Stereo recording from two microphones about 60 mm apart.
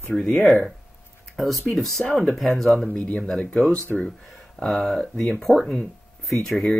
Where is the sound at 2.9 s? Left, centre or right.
Centre.